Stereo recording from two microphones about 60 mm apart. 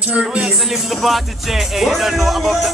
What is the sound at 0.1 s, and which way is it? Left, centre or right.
Speech, right.